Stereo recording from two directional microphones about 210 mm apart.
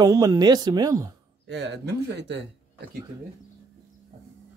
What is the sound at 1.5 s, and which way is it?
Speech, 55° right (ahead or behind).